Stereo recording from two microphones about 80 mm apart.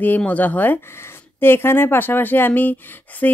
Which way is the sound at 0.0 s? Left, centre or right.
Left.